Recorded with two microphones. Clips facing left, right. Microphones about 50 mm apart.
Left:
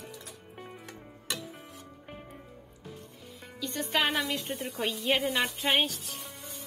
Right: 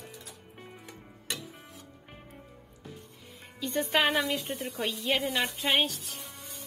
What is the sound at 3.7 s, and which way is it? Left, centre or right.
A woman's voice, centre.